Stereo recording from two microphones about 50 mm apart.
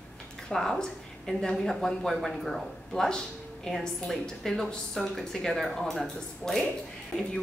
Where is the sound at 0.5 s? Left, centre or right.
Centre.